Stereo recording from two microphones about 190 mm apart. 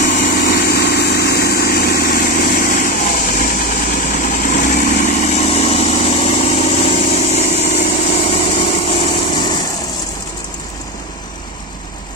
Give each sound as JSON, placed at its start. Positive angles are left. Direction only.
{"t": 0.0, "sound": "vehicle", "side_deg": 50}